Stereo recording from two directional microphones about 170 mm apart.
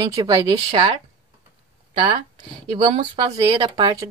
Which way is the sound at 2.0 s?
30° right (ahead or behind).